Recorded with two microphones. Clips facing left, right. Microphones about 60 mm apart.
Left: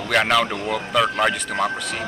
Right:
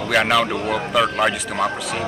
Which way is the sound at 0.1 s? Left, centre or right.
Centre.